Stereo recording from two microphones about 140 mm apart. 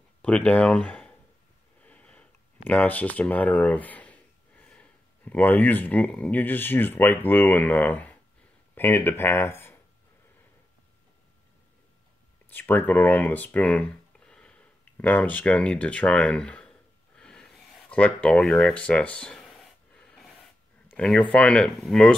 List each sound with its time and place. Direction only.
0.2 s speech: 10° left (ahead or behind)
12.4 s a sound: 15° left (ahead or behind)
20.9 s speech: 10° left (ahead or behind)